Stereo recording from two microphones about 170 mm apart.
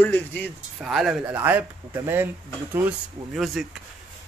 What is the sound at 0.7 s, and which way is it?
Speech, centre (ahead or behind).